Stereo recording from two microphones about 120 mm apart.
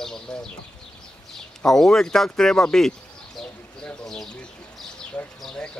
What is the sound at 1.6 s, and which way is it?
Speech, 5° left (ahead or behind).